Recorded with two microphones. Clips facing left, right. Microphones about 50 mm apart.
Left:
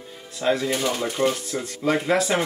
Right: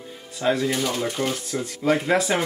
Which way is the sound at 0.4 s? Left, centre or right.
Centre.